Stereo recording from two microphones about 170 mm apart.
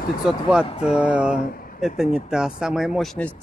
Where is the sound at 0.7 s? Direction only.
40° left (ahead or behind).